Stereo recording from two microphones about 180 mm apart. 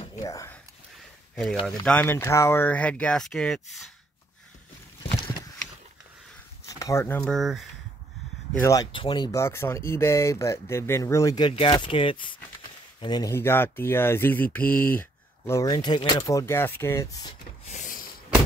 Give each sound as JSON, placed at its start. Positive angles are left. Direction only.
{"t": 0.2, "sound": "speech", "side_deg": 20}
{"t": 1.3, "sound": "speech", "side_deg": 5}
{"t": 6.6, "sound": "a sound", "side_deg": 20}
{"t": 7.2, "sound": "speech", "side_deg": 0}
{"t": 8.5, "sound": "speech", "side_deg": 15}
{"t": 8.9, "sound": "speech", "side_deg": 25}
{"t": 17.6, "sound": "snort", "side_deg": 40}